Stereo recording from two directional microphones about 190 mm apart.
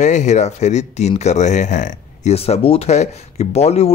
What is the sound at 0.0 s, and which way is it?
Speech, 40° left (ahead or behind).